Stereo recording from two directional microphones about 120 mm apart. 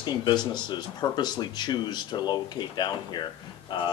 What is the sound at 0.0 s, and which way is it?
Speech, 40° left (ahead or behind).